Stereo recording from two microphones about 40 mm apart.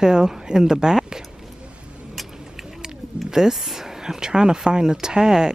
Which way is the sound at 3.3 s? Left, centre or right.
Centre.